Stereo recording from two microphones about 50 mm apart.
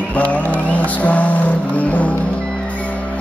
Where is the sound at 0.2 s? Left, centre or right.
Left.